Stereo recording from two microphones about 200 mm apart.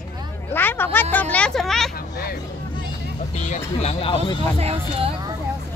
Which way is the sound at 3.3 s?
35° left (ahead or behind).